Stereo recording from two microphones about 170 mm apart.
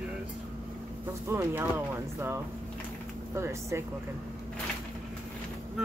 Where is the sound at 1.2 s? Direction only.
15° right (ahead or behind).